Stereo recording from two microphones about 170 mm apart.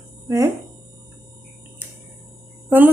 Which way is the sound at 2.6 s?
10° right (ahead or behind).